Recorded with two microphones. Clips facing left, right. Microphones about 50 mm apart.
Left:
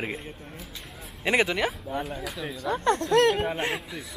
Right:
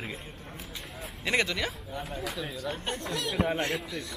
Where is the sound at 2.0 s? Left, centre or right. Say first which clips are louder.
Left 2 dB; centre.